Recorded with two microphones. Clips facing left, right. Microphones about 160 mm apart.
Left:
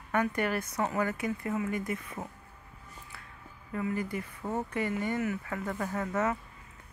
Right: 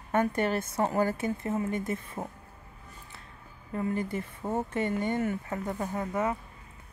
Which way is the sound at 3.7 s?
30° right (ahead or behind).